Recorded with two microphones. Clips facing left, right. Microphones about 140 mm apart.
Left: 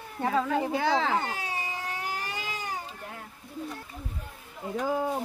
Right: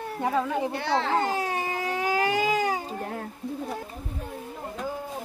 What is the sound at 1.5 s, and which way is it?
Baby cry, 85° right.